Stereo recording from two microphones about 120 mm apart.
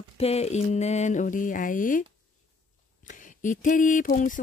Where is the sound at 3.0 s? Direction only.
90° left.